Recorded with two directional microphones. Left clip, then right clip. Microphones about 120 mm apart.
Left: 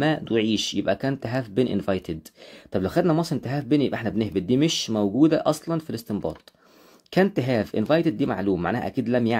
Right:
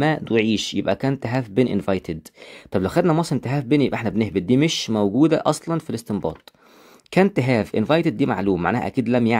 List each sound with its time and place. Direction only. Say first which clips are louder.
0.0 s speech: right 3 dB; 45° right (ahead or behind)